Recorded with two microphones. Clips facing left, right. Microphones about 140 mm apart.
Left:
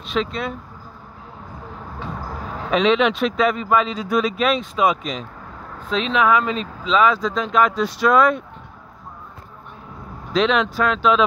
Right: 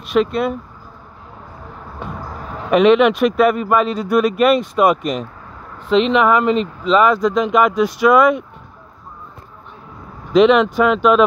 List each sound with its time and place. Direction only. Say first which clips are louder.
0.2 s speech: right 8 dB; 50° right (ahead or behind)
2.7 s speech: right 6 dB; 55° right (ahead or behind)
5.8 s speech: right 6 dB; 70° right (ahead or behind)
10.3 s speech: right 8 dB; 55° right (ahead or behind)